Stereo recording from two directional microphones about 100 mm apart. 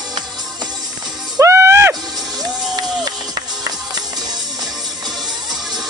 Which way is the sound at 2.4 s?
40° right (ahead or behind).